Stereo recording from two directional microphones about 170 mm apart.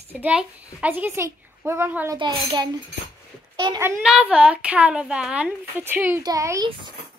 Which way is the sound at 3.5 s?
25° right (ahead or behind).